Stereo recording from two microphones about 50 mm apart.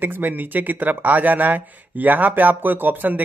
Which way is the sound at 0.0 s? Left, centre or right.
Right.